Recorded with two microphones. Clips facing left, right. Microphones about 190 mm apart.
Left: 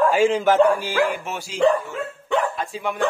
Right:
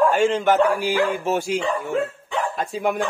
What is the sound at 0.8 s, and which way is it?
Speech, 20° right (ahead or behind).